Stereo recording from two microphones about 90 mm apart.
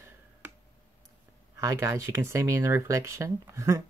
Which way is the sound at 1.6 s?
35° right (ahead or behind).